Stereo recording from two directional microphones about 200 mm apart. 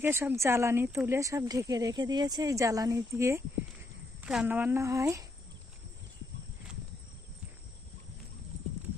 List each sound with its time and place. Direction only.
0.0 s speech: 10° right (ahead or behind)